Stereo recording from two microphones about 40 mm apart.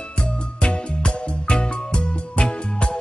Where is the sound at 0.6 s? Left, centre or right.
Left.